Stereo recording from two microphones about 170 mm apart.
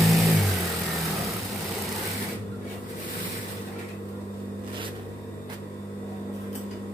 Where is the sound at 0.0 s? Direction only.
Centre (ahead or behind).